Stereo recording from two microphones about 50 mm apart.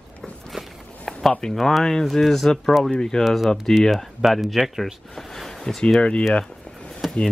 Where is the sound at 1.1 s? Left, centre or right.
Centre.